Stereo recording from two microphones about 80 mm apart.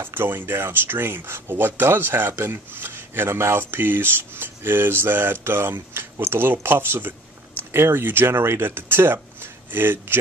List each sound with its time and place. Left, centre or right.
0.0 s speech: right